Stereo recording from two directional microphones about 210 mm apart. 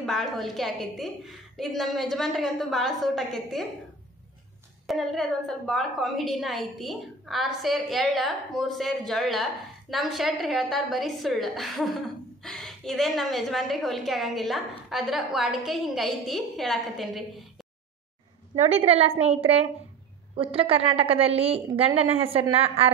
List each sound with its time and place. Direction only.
0.0 s a woman's voice: centre (ahead or behind)
4.8 s a woman's voice: centre (ahead or behind)
18.5 s a woman's voice: 30° right (ahead or behind)